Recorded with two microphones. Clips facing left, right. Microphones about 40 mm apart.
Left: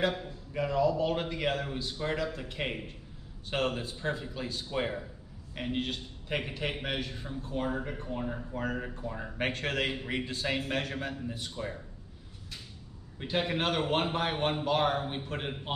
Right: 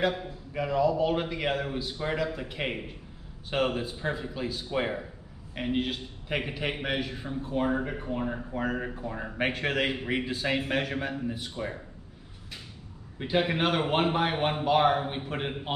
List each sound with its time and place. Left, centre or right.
0.0 s a man's voice: centre
11.5 s speech: centre
13.2 s a man's voice: centre